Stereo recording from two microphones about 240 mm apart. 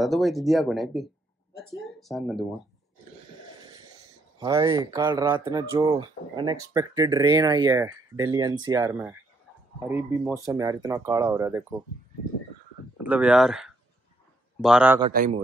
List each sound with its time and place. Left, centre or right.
0.0 s speech: centre
4.4 s speech: centre
13.0 s speech: centre
15.1 s speech: right